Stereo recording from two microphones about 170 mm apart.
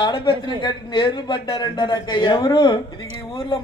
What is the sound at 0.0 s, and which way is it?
Speech, 25° left (ahead or behind).